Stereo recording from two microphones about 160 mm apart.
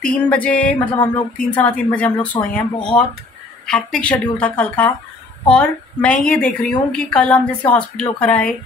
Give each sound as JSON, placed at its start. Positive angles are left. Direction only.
{"t": 0.0, "sound": "a woman's voice", "side_deg": 10}
{"t": 0.9, "sound": "speech", "side_deg": 30}
{"t": 1.5, "sound": "a woman's voice", "side_deg": 10}